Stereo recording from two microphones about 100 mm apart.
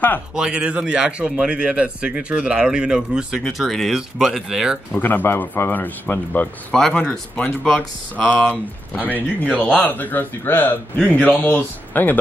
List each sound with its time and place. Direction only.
0.4 s a man's voice: 10° right (ahead or behind)
4.9 s speech: 20° left (ahead or behind)